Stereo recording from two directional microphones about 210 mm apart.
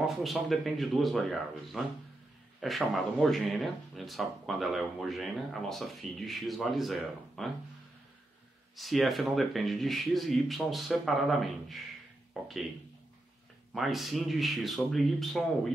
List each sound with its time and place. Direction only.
0.0 s speech: centre (ahead or behind)
8.7 s speech: centre (ahead or behind)
13.7 s speech: centre (ahead or behind)